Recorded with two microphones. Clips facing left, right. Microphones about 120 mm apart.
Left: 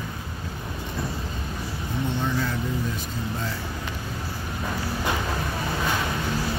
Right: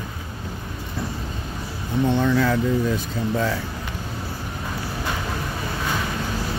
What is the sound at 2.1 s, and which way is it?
Speech, 90° right.